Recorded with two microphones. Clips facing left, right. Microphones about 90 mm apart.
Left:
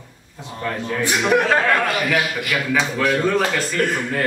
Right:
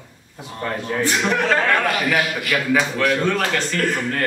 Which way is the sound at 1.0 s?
10° left (ahead or behind).